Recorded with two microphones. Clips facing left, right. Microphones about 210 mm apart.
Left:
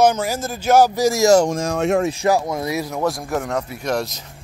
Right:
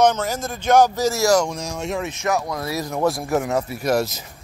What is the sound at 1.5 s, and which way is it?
Speech, 55° left (ahead or behind).